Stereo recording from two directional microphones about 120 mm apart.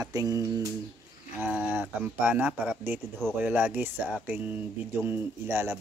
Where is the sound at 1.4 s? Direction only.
15° right (ahead or behind).